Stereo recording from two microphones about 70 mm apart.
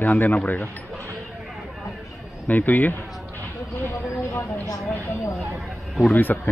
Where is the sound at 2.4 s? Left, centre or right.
Left.